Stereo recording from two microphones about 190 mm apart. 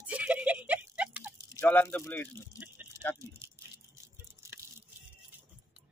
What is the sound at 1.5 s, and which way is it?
Speech, 10° left (ahead or behind).